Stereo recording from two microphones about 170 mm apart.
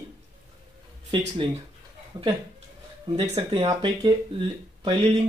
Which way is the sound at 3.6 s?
25° right (ahead or behind).